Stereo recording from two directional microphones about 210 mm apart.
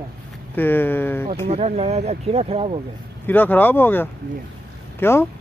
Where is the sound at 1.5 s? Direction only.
30° right (ahead or behind).